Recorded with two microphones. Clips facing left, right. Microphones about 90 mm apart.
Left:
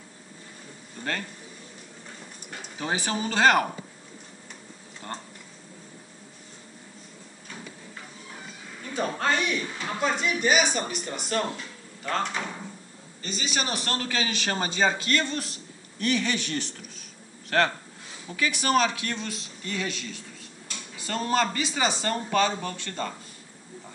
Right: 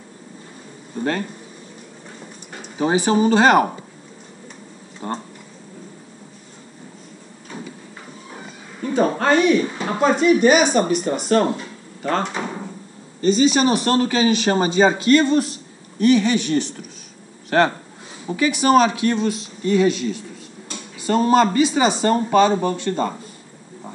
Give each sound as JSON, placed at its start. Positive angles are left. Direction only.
{"t": 0.9, "sound": "a man's voice", "side_deg": -20}
{"t": 3.1, "sound": "a man's voice", "side_deg": -20}
{"t": 5.0, "sound": "a man's voice", "side_deg": -25}
{"t": 8.8, "sound": "speech", "side_deg": -40}
{"t": 9.8, "sound": "speech", "side_deg": -50}
{"t": 13.2, "sound": "a man's voice", "side_deg": -25}
{"t": 17.5, "sound": "a man's voice", "side_deg": -20}